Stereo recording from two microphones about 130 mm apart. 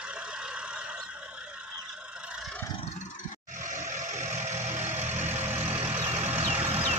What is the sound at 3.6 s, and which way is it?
Vehicle, 70° right (ahead or behind).